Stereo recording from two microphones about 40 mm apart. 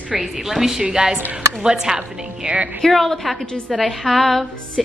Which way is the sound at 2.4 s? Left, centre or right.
Right.